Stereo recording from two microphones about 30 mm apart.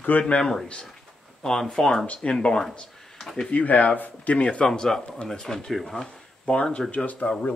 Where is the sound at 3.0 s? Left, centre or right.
Centre.